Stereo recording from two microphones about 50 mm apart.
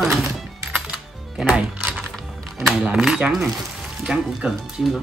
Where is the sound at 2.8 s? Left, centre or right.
Centre.